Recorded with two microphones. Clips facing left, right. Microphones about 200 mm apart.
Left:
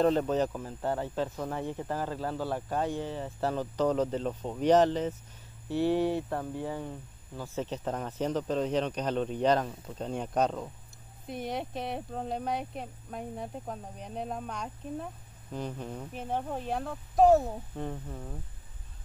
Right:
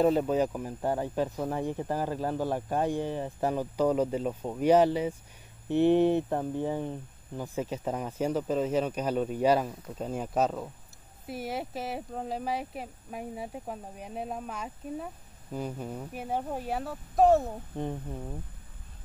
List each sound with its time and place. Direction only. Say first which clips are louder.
0.0 s speech: right 1 dB; 10° right (ahead or behind)
17.7 s speech: right 7 dB; 15° right (ahead or behind)